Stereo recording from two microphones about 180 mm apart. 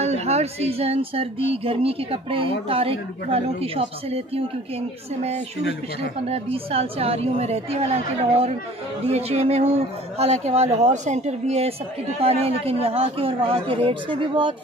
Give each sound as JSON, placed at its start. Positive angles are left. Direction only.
{"t": 0.0, "sound": "speech", "side_deg": -35}
{"t": 6.2, "sound": "speech", "side_deg": -35}